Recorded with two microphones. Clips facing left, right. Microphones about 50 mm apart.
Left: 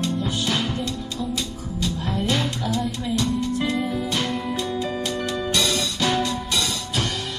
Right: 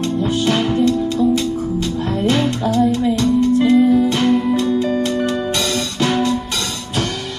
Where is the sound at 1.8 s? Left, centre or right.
Centre.